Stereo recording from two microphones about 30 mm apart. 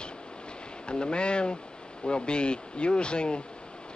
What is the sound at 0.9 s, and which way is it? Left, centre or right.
Speech, left.